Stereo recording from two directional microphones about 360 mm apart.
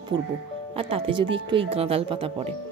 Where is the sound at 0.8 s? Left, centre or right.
Centre.